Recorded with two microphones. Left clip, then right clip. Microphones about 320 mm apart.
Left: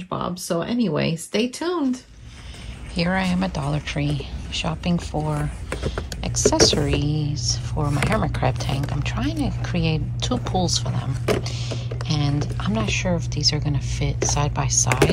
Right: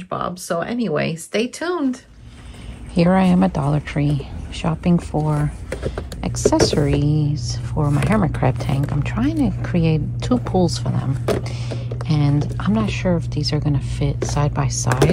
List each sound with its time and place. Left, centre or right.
0.5 s speech: centre
3.0 s speech: centre